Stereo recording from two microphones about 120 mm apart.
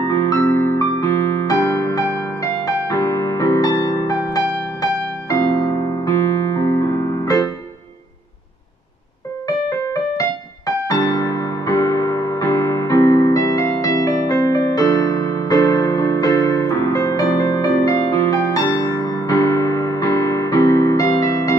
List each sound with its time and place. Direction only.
0.0 s music: 30° left (ahead or behind)
10.9 s music: 30° left (ahead or behind)